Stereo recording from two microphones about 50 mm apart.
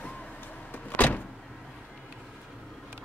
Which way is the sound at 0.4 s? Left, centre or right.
Left.